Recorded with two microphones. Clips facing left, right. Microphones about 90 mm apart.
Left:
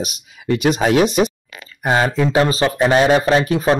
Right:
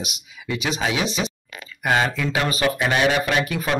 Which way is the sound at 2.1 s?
30° left (ahead or behind).